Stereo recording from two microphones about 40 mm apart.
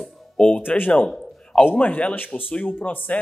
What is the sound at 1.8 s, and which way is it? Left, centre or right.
Speech, left.